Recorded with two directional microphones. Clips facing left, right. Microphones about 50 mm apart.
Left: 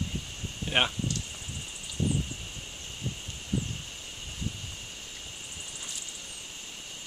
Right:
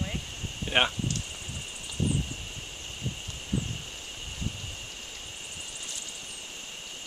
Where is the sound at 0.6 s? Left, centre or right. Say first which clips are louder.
Right 2 dB; centre.